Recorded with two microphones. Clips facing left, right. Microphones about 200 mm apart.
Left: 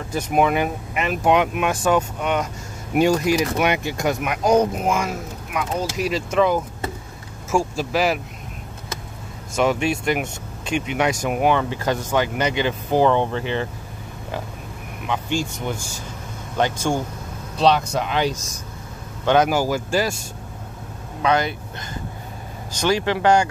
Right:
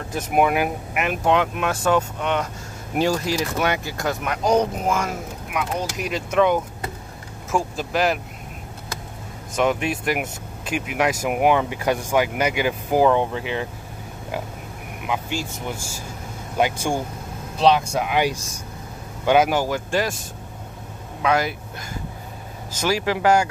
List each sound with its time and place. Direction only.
0.1 s speech: 5° right (ahead or behind)
1.2 s speech: 15° left (ahead or behind)
5.5 s speech: centre (ahead or behind)
9.6 s speech: centre (ahead or behind)
15.0 s speech: 5° right (ahead or behind)